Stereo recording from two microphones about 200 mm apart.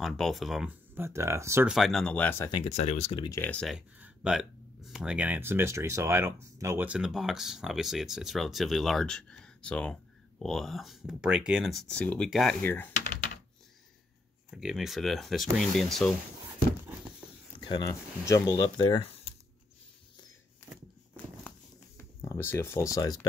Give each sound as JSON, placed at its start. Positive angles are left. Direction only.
{"t": 0.0, "sound": "speech", "side_deg": 0}
{"t": 1.7, "sound": "speech", "side_deg": 0}
{"t": 2.6, "sound": "speech", "side_deg": 35}
{"t": 3.3, "sound": "speech", "side_deg": 10}
{"t": 14.5, "sound": "speech", "side_deg": 0}
{"t": 17.6, "sound": "speech", "side_deg": 20}
{"t": 21.5, "sound": "writing", "side_deg": 10}